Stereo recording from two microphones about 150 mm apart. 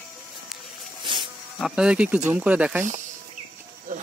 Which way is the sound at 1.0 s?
35° right (ahead or behind).